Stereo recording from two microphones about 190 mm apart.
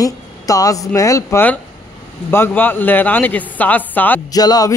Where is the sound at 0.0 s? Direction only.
20° left (ahead or behind).